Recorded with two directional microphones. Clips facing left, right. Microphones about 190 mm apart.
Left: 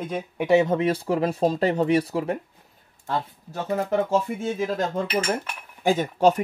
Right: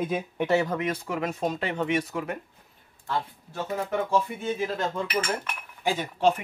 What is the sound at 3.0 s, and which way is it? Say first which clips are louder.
Speech: left 2 dB; 40° left (ahead or behind).